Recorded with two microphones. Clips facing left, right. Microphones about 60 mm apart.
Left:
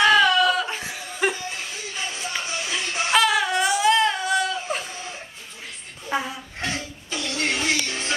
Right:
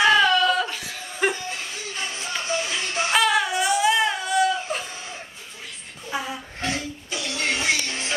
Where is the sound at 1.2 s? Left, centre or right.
Centre.